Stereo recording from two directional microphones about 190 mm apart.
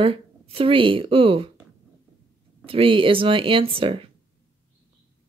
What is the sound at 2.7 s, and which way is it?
Speech, 30° right (ahead or behind).